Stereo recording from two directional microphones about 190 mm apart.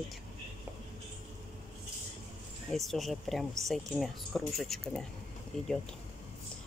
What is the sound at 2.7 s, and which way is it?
Speech, centre (ahead or behind).